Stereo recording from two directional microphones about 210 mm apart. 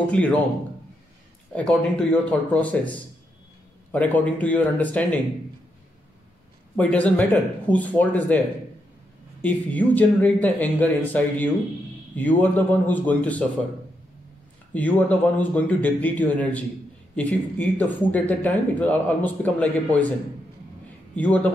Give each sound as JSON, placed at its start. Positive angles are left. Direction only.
{"t": 0.1, "sound": "speech", "side_deg": 5}
{"t": 1.5, "sound": "speech", "side_deg": 5}
{"t": 6.8, "sound": "speech", "side_deg": 5}
{"t": 9.4, "sound": "speech", "side_deg": 5}
{"t": 14.7, "sound": "speech", "side_deg": 10}
{"t": 21.1, "sound": "a man's voice", "side_deg": 5}